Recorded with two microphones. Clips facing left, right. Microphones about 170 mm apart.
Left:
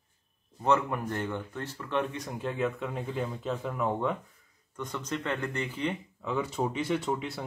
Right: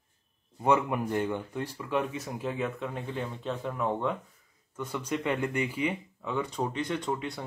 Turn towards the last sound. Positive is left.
turn(degrees=5)  # may be behind; listen again after turning